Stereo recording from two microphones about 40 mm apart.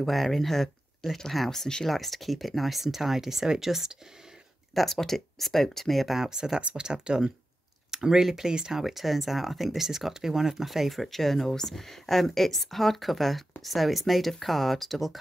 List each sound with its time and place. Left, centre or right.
0.0 s speech: centre
4.7 s speech: centre
6.1 s speech: centre
8.8 s speech: centre